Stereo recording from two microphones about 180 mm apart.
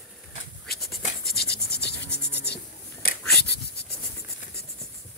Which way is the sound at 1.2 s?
60° left (ahead or behind).